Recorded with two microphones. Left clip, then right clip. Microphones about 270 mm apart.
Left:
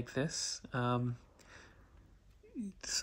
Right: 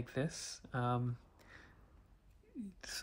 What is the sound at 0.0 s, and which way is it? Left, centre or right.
Speech, centre.